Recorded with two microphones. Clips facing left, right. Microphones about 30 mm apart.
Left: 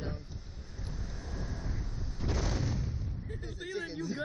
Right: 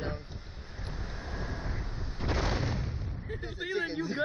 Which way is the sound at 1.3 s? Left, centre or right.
Right.